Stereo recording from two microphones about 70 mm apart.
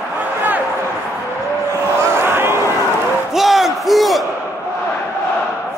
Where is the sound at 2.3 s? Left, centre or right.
Right.